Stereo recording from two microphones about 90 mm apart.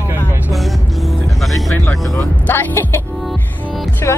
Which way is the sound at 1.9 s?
25° left (ahead or behind).